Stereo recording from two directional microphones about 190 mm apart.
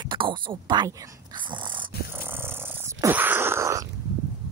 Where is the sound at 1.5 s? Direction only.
25° right (ahead or behind).